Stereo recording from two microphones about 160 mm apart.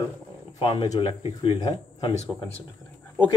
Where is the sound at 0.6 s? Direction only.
35° left (ahead or behind).